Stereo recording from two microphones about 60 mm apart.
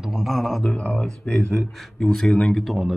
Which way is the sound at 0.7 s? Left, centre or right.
Centre.